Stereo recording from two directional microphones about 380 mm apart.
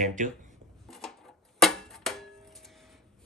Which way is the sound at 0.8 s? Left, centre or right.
Centre.